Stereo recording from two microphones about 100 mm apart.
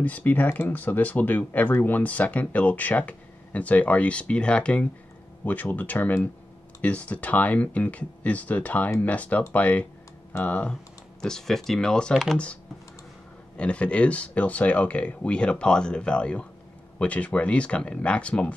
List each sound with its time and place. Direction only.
0.0 s speech: 15° left (ahead or behind)
13.6 s speech: 10° left (ahead or behind)